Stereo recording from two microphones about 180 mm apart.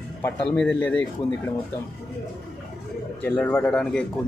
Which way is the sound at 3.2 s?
10° left (ahead or behind).